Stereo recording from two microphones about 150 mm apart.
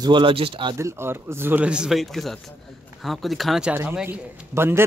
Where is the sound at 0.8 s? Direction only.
15° right (ahead or behind); by 3.7 s centre (ahead or behind).